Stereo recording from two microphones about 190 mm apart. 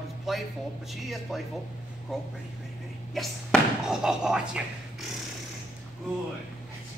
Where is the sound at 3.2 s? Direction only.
Centre (ahead or behind).